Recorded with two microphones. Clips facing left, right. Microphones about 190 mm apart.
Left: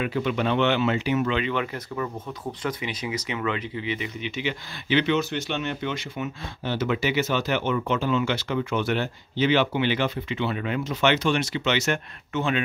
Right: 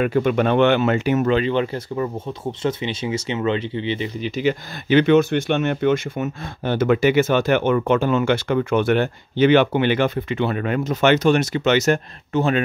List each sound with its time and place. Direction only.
0.0 s speech: 50° right (ahead or behind)